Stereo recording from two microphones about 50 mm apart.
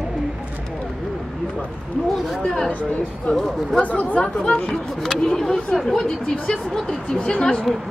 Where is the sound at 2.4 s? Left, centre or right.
Centre.